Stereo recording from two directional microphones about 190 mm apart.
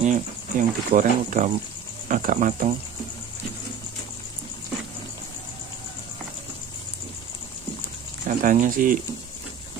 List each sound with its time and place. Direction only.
0.0 s speech: 40° right (ahead or behind)
8.3 s speech: 45° right (ahead or behind)